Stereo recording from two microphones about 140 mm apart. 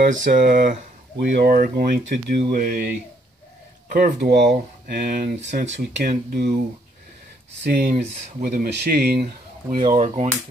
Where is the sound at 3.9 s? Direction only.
70° right (ahead or behind).